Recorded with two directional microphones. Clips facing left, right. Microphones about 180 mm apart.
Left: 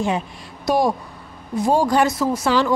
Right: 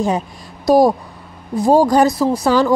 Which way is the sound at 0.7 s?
40° right (ahead or behind).